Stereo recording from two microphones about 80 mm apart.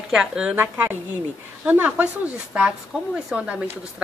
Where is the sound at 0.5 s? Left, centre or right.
Right.